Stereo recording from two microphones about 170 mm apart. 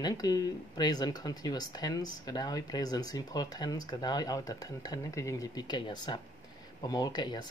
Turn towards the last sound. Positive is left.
turn(degrees=25)  # may be behind; listen again after turning